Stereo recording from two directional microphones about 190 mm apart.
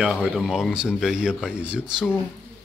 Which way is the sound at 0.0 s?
5° right (ahead or behind).